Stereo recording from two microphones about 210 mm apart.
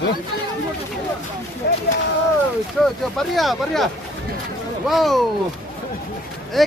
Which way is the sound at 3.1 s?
Centre (ahead or behind).